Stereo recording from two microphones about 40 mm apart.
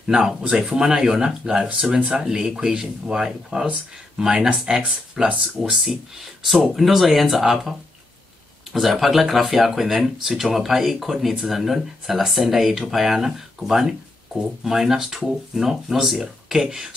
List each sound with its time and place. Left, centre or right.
0.0 s speech: centre
6.4 s speech: centre
8.7 s speech: centre